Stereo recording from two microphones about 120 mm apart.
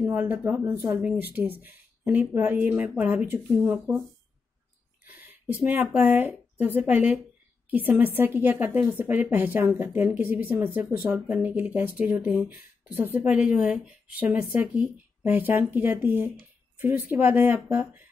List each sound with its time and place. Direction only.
0.0 s speech: 15° right (ahead or behind)
5.0 s a woman's voice: 15° right (ahead or behind)